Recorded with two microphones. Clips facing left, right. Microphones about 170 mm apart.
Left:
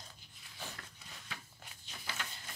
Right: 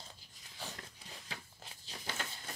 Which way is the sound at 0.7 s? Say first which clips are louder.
Right 2 dB; 30° right (ahead or behind).